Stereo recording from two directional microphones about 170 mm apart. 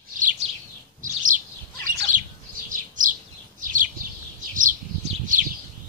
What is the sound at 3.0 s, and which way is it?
Bird, 50° right (ahead or behind).